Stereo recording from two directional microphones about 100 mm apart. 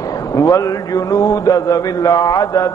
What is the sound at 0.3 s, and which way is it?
A man's voice, 30° left (ahead or behind).